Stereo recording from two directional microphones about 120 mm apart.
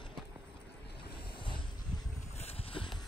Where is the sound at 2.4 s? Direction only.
55° left (ahead or behind).